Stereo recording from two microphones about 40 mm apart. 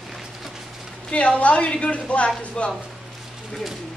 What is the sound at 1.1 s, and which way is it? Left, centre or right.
A woman's voice, left.